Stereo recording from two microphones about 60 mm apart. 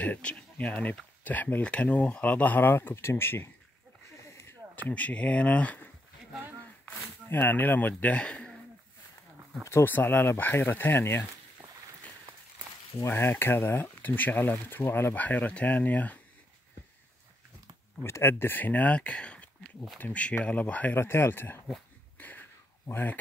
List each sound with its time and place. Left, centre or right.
0.0 s speech: left
2.9 s speech: left
4.2 s a sound: left
4.8 s speech: left
7.2 s speech: left; by 8.5 s centre
9.8 s speech: left
13.0 s speech: left
15.1 s speech: left
18.0 s speech: left
21.0 s speech: left
22.2 s a sound: left
22.8 s speech: left